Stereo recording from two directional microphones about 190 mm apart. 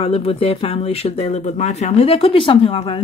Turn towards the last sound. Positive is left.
turn(degrees=30)  # may be behind; listen again after turning